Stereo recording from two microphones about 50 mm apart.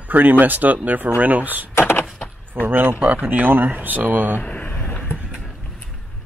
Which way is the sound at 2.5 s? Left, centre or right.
Right.